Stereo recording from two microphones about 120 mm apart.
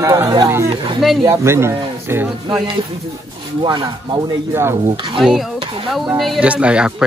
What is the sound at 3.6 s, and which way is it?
Speech, 40° right (ahead or behind).